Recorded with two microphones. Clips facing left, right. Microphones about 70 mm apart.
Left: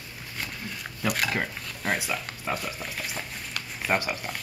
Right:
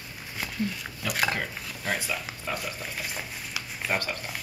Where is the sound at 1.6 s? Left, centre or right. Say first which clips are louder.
Left 2 dB; centre.